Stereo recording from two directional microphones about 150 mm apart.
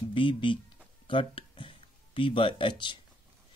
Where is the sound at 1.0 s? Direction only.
35° left (ahead or behind).